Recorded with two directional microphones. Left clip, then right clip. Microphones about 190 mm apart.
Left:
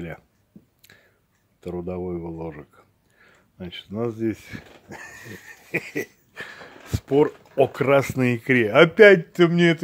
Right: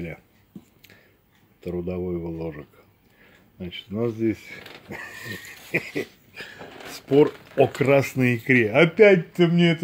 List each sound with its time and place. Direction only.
1.6 s dog: 15° left (ahead or behind)
6.3 s a sound: 35° left (ahead or behind)
7.2 s speech: 10° left (ahead or behind); by 9.8 s 30° left (ahead or behind)